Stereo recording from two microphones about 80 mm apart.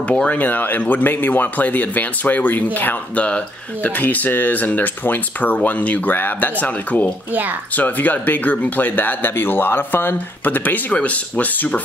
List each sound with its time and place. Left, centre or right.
0.1 s speech: centre